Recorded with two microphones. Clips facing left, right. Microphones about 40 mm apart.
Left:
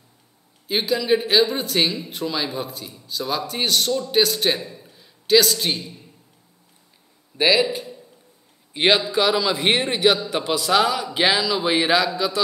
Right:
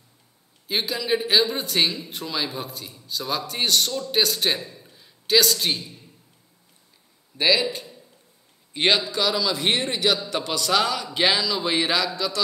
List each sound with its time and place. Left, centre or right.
0.7 s speech: centre
7.3 s a man's voice: centre